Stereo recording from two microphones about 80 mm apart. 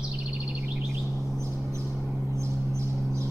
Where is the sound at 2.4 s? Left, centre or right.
Right.